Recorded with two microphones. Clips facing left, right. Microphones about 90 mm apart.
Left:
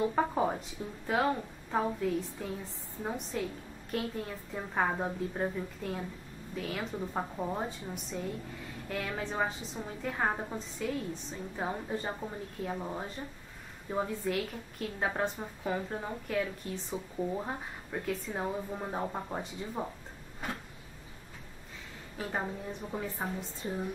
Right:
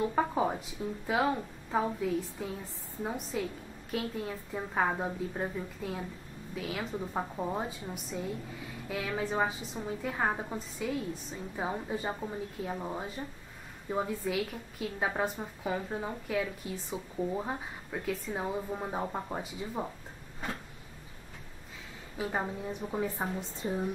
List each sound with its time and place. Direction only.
0.1 s a woman's voice: 5° right (ahead or behind)
22.1 s a woman's voice: 10° right (ahead or behind)